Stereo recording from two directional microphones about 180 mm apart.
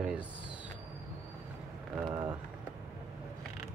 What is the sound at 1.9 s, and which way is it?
Run, centre (ahead or behind).